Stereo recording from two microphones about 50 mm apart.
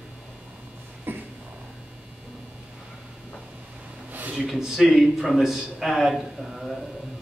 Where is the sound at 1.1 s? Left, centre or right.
Right.